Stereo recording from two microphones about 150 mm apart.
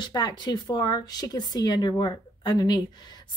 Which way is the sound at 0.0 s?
25° left (ahead or behind).